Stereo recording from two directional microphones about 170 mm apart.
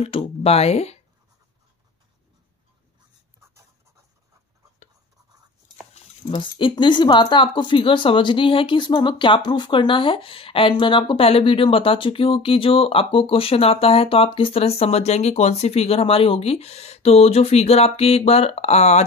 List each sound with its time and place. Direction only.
0.4 s speech: 40° left (ahead or behind)
6.3 s speech: 30° left (ahead or behind)